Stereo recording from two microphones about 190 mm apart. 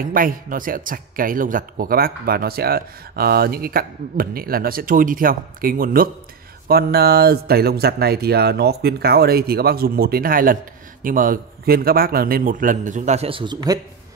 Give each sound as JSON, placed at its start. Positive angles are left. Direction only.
{"t": 0.0, "sound": "speech", "side_deg": -45}